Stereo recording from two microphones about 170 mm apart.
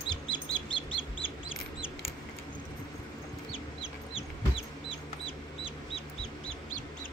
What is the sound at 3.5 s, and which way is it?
Chicken, 35° left (ahead or behind).